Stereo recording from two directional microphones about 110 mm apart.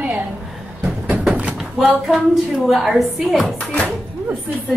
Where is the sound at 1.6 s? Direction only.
Centre (ahead or behind).